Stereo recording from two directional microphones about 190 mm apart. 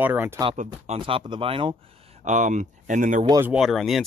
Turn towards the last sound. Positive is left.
turn(degrees=0)  # may be behind; listen again after turning